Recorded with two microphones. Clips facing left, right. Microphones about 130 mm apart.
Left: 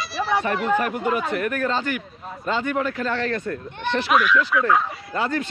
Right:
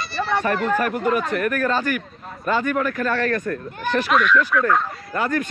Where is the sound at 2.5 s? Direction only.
25° left (ahead or behind).